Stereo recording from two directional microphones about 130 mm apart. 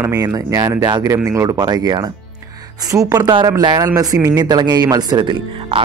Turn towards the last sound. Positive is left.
turn(degrees=-35)  # may be behind; listen again after turning